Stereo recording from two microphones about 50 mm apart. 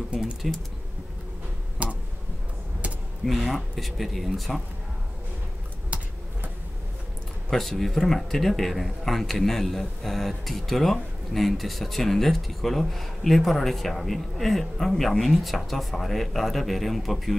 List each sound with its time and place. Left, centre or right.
0.1 s speech: centre
1.8 s tick-tock: right
3.3 s a man's voice: centre
5.9 s a sound: right
7.4 s a man's voice: centre